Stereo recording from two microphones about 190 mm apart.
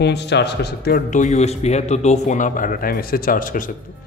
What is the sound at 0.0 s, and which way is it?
A man's voice, 65° left (ahead or behind).